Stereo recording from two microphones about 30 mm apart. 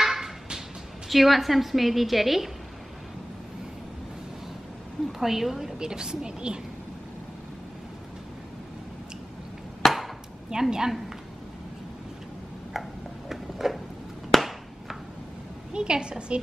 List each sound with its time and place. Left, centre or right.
0.0 s a sound: centre
1.0 s a woman's voice: centre
5.0 s a woman's voice: centre
5.8 s speech: right
9.8 s chop: centre
10.5 s a woman's voice: centre
12.7 s tick-tock: centre
13.3 s a sound: centre
14.3 s chop: centre
15.7 s a woman's voice: right